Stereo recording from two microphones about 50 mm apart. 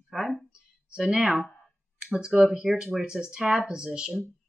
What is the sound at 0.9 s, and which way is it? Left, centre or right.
Speech, centre.